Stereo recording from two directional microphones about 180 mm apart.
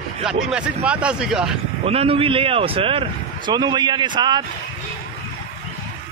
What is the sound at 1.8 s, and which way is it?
Speech, 30° right (ahead or behind).